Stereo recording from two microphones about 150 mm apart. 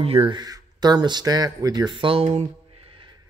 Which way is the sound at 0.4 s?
25° right (ahead or behind).